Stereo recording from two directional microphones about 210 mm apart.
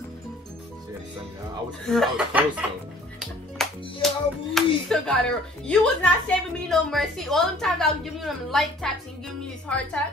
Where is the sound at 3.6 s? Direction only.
Centre (ahead or behind).